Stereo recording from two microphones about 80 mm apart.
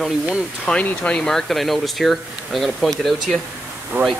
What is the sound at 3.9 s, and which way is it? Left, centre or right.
Speech, right.